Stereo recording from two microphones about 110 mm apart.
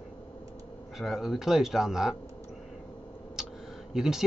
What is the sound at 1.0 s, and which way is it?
A man's voice, 5° right (ahead or behind).